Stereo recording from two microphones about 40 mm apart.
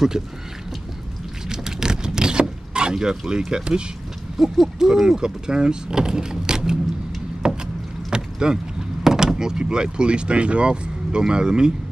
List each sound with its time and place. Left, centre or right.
0.2 s speech: centre
1.5 s vehicle: centre
4.4 s speech: centre
7.4 s rowboat: right
9.0 s speech: centre